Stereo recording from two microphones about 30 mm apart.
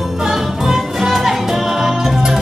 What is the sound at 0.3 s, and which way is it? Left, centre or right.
Music, centre.